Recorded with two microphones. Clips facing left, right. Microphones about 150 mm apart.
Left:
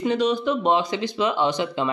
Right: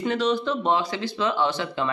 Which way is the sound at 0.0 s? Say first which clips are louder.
Left 2 dB; 15° left (ahead or behind).